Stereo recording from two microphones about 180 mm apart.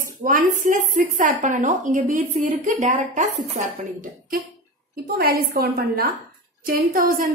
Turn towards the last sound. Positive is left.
turn(degrees=-55)  # may be behind; listen again after turning